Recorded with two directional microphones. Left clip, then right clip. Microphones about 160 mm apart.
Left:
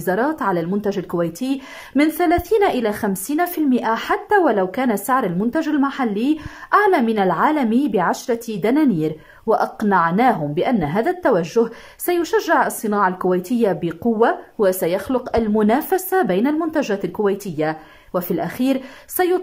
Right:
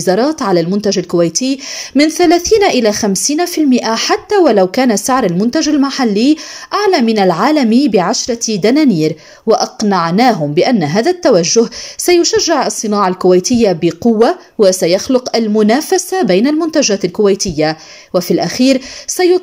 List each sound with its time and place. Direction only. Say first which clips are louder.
0.0 s a woman's voice: right 7 dB; 15° right (ahead or behind)